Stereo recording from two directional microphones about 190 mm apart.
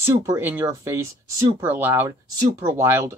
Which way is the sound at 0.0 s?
15° right (ahead or behind).